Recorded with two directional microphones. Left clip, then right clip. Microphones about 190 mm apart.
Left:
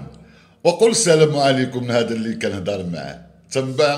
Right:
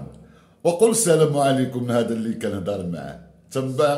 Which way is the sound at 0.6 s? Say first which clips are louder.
Left 3 dB; 15° right (ahead or behind).